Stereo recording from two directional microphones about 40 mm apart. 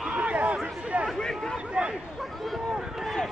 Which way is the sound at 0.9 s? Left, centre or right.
Right.